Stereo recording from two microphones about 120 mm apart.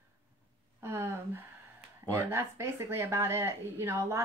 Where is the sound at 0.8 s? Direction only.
20° right (ahead or behind).